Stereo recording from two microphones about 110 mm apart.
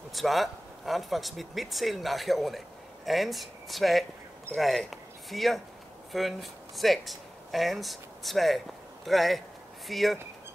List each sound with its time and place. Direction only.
0.1 s speech: centre (ahead or behind)